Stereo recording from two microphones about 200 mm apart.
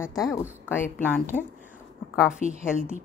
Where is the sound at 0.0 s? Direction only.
15° left (ahead or behind).